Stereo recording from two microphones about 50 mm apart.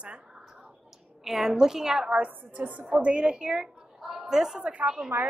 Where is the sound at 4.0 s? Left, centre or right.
Centre.